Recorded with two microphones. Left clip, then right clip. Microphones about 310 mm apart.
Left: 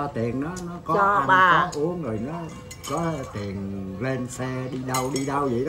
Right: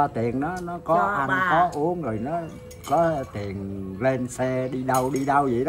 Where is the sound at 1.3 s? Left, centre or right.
Left.